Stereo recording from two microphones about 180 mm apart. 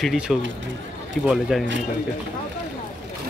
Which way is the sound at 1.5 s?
Centre (ahead or behind).